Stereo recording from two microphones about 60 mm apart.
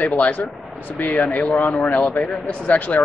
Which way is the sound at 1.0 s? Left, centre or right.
Left.